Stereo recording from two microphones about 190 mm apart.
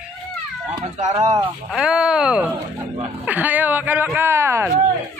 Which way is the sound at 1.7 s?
5° right (ahead or behind).